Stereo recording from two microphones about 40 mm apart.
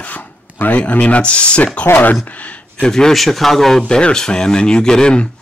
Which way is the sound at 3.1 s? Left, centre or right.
Centre.